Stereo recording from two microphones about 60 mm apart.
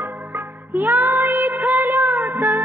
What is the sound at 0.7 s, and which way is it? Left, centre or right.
Music of bollywood, right.